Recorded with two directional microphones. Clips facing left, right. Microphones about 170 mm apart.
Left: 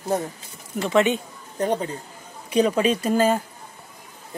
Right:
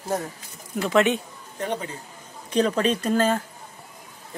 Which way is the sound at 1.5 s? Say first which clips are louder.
Left 5 dB; 35° left (ahead or behind).